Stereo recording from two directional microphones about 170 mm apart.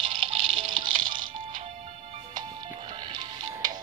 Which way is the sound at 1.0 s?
55° right (ahead or behind).